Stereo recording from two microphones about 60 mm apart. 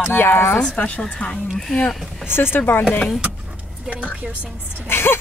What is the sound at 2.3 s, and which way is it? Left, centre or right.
Speech, left.